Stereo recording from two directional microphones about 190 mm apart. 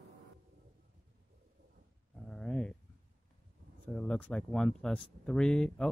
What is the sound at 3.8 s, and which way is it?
Speech, 5° left (ahead or behind).